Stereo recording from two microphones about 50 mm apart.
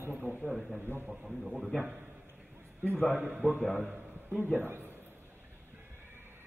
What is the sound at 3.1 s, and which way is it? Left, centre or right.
Speech, right.